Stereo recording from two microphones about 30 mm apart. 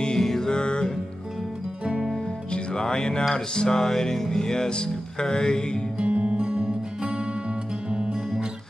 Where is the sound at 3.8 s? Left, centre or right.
Centre.